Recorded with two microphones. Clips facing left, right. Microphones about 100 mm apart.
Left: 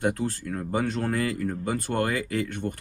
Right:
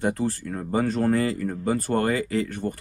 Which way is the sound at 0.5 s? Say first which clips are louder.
Right 3 dB; 30° right (ahead or behind).